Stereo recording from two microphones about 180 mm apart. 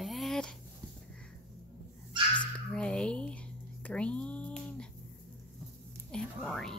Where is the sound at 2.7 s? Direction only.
5° left (ahead or behind).